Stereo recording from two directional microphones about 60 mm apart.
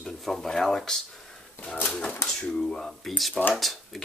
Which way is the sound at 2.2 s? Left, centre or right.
Centre.